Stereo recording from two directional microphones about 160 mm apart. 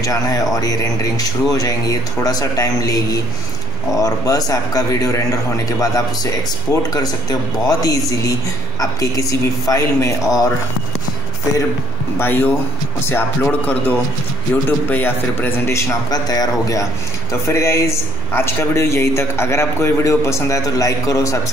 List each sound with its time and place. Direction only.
0.0 s speech: 20° left (ahead or behind)
12.2 s speech: 15° left (ahead or behind)